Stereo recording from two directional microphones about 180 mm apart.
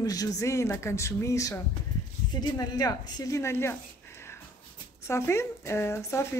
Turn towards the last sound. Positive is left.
turn(degrees=15)  # may be behind; listen again after turning